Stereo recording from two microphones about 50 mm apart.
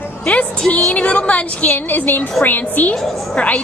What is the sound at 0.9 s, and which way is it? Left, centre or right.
A woman's voice, left.